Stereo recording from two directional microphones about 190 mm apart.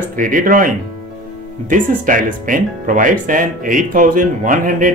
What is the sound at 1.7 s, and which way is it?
Speech, 45° right (ahead or behind).